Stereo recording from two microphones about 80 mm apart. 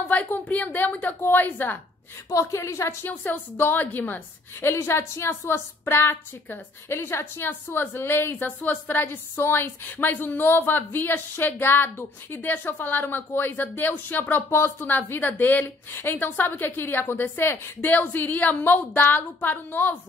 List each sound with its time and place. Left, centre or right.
0.1 s a woman's voice: centre
2.2 s a woman's voice: left
3.1 s a woman's voice: left